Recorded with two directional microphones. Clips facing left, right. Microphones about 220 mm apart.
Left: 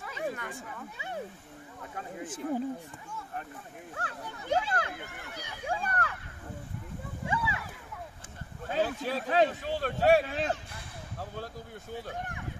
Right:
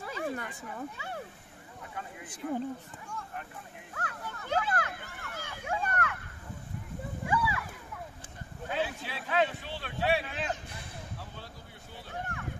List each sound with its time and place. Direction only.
0.0 s a sound: 35° right (ahead or behind)
0.9 s speech: 20° left (ahead or behind)
2.2 s speech: 5° left (ahead or behind)
3.9 s speech: 30° left (ahead or behind)
4.3 s speech: 15° left (ahead or behind)
4.6 s speech: 25° left (ahead or behind)
5.0 s speech: 15° left (ahead or behind)
5.7 s speech: 30° left (ahead or behind)
7.2 s a sound: 25° left (ahead or behind)
8.6 s speech: 40° left (ahead or behind)